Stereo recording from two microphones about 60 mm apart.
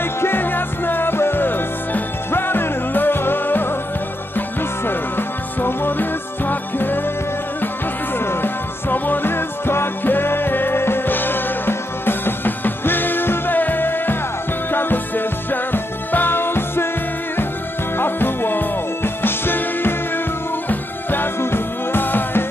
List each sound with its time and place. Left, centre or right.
0.0 s music: left
8.2 s music: left
17.9 s music: left